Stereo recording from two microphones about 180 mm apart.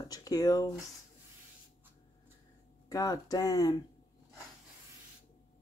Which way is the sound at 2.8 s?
20° left (ahead or behind).